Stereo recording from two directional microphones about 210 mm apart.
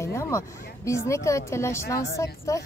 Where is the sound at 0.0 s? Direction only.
15° left (ahead or behind).